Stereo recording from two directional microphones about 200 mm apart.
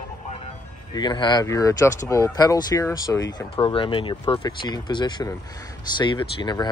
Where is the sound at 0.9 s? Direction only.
20° left (ahead or behind).